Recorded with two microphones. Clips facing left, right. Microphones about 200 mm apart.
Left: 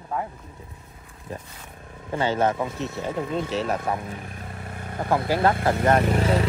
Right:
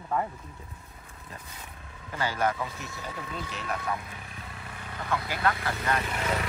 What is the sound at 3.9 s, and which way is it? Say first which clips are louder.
Vehicle: left 7 dB; 45° left (ahead or behind).